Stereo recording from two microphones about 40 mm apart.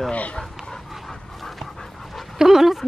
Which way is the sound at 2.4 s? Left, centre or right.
Centre.